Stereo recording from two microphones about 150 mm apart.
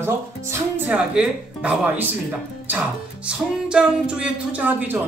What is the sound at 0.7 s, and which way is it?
Music, 10° right (ahead or behind).